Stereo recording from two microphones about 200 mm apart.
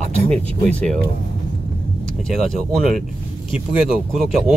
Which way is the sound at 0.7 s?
5° left (ahead or behind).